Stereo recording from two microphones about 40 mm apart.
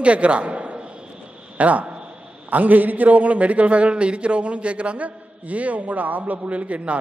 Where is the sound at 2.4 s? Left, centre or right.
Right.